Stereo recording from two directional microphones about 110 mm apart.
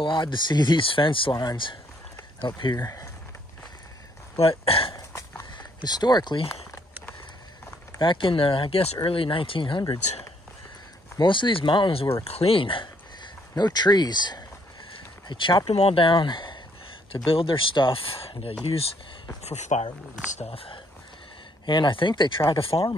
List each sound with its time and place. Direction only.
0.0 s speech: 45° left (ahead or behind)
1.3 s speech: 35° left (ahead or behind)
2.8 s speech: 25° left (ahead or behind)
4.4 s speech: 60° left (ahead or behind)
4.9 s a sound: 35° left (ahead or behind)
8.0 s speech: 50° left (ahead or behind)
11.1 s speech: 45° left (ahead or behind)
15.7 s speech: 65° left (ahead or behind)
19.4 s speech: 85° left
20.2 s speech: 70° left (ahead or behind)
21.6 s speech: 45° left (ahead or behind)
22.5 s speech: 55° left (ahead or behind)